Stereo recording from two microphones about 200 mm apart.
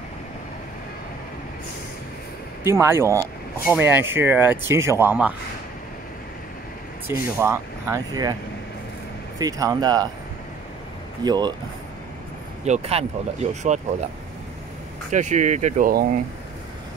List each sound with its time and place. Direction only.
2.6 s speech: 15° right (ahead or behind)
7.1 s speech: 15° right (ahead or behind)
9.4 s speech: 20° right (ahead or behind)
11.2 s speech: 20° right (ahead or behind)
12.6 s speech: 35° right (ahead or behind)
15.0 s speech: 35° right (ahead or behind)